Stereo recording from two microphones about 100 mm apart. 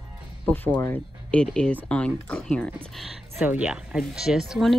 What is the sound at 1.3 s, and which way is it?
Speech, 10° left (ahead or behind).